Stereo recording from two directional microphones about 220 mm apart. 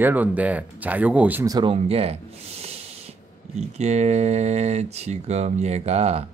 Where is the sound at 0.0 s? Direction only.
10° right (ahead or behind).